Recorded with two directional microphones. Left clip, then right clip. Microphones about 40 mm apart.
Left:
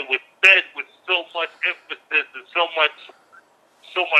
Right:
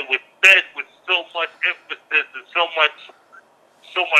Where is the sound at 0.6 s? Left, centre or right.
Centre.